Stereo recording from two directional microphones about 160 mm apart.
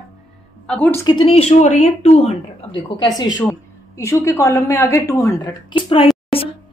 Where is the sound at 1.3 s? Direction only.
40° left (ahead or behind).